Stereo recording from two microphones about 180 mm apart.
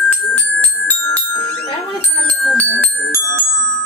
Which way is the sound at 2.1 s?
10° left (ahead or behind).